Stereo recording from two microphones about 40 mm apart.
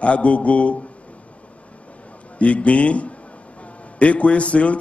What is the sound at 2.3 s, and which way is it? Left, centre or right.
A man's voice, left.